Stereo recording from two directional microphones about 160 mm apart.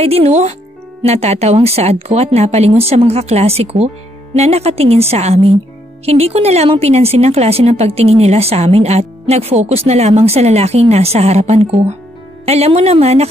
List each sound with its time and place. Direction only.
0.0 s speech: 40° right (ahead or behind)